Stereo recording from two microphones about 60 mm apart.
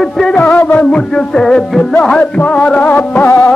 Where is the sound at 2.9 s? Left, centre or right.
Left.